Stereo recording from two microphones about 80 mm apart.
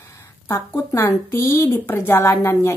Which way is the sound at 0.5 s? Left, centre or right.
Left.